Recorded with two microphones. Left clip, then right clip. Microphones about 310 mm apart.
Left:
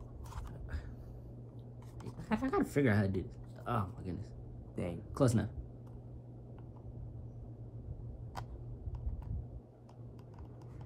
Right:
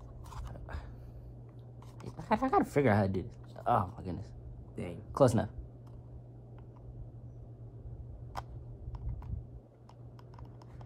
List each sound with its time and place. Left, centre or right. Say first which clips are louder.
2.2 s speech: right 6 dB; centre
4.8 s speech: left 2 dB; centre
5.1 s speech: right 7 dB; centre